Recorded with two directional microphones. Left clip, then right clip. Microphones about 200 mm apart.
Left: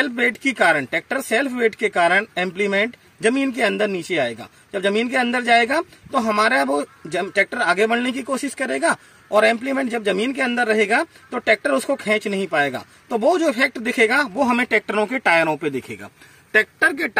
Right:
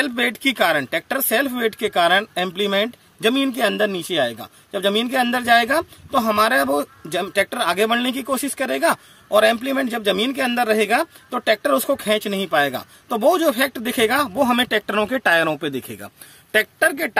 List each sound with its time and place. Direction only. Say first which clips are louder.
0.0 s speech: even; 5° right (ahead or behind)
16.8 s speech: even; 35° right (ahead or behind)